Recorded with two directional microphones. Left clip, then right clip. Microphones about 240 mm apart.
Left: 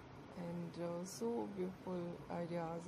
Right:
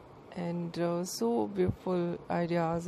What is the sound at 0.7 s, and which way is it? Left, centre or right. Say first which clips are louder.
Speech: right 14 dB; right.